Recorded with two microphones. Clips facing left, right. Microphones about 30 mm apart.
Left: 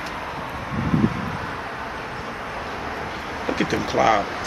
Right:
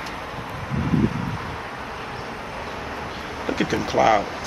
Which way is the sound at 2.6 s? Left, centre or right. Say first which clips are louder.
Left 2 dB; centre.